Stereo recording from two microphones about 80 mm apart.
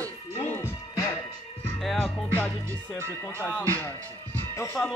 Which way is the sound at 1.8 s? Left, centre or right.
Centre.